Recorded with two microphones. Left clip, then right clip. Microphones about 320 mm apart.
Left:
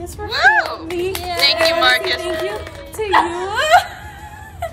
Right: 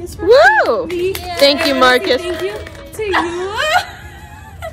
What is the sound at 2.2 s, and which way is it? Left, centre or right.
Speech, left.